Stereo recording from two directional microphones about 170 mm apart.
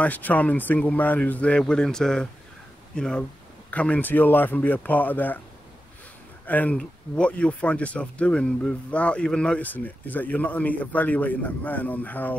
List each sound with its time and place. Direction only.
0.0 s speech: 10° left (ahead or behind)
6.4 s speech: 10° left (ahead or behind)